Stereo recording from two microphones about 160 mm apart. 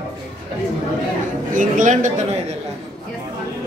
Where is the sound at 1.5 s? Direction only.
55° right (ahead or behind).